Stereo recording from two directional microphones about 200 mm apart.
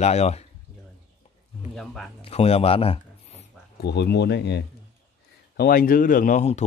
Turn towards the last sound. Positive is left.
turn(degrees=35)  # may be behind; listen again after turning